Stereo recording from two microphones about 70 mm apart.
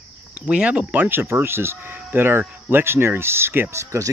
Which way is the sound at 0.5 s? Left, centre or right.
Centre.